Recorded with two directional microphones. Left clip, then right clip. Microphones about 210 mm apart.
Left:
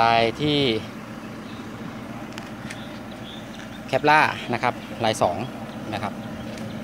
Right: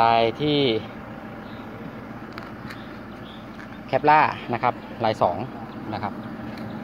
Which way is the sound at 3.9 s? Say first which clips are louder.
Even; 10° left (ahead or behind).